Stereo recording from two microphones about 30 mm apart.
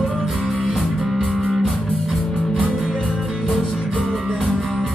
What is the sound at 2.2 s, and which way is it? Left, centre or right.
Music, centre.